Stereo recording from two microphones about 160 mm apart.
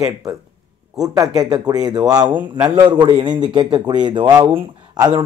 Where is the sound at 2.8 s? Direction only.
30° right (ahead or behind).